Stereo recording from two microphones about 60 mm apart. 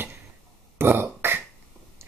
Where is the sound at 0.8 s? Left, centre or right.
Right.